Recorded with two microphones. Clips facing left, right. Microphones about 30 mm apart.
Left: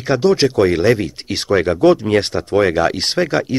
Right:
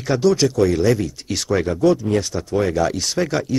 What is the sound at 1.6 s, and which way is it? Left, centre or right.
Speech, left.